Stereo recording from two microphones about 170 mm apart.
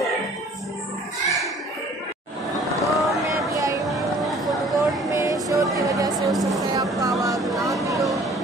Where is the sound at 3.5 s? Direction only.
20° right (ahead or behind).